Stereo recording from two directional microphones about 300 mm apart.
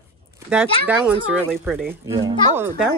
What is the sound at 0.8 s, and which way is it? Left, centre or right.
Speech, centre.